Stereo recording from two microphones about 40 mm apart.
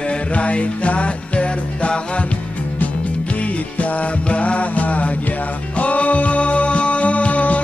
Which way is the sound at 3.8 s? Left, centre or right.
Left.